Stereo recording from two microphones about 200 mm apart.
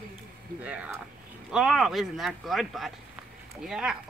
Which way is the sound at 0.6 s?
5° right (ahead or behind).